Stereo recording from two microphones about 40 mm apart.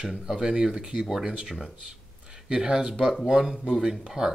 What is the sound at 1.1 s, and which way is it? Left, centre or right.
Speech, centre.